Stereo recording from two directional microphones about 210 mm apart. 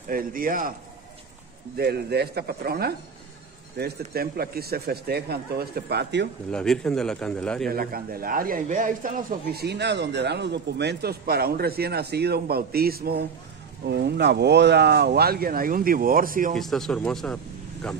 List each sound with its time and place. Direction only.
0.1 s a man's voice: 40° right (ahead or behind)
1.8 s a man's voice: 50° right (ahead or behind)
6.5 s a man's voice: 5° left (ahead or behind)
7.7 s a man's voice: 45° right (ahead or behind)
16.5 s a man's voice: centre (ahead or behind)